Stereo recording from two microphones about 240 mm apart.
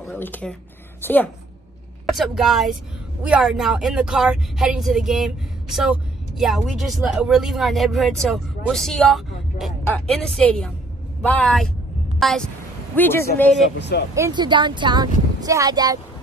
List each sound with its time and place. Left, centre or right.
0.0 s a man's voice: centre
13.7 s speech: left
14.1 s speech: centre